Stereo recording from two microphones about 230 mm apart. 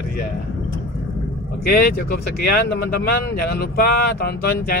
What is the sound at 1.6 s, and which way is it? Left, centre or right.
Speech, left.